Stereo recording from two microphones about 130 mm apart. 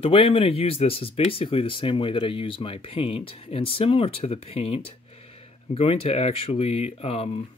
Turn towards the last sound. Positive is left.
turn(degrees=50)  # may be behind; listen again after turning